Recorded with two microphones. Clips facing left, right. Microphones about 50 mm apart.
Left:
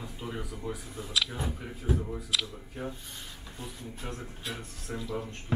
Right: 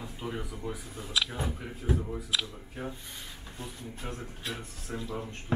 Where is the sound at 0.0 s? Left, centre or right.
Centre.